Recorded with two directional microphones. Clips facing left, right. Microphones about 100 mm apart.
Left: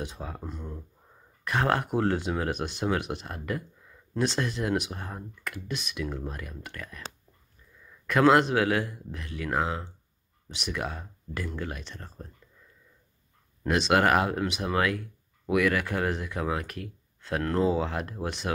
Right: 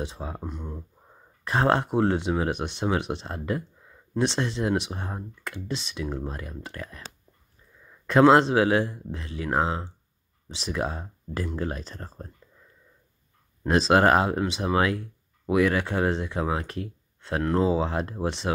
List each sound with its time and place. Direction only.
0.0 s speech: 25° right (ahead or behind)
0.4 s a sound: 15° right (ahead or behind)
1.4 s speech: 30° right (ahead or behind)
8.1 s speech: 25° right (ahead or behind)
13.7 s speech: 30° right (ahead or behind)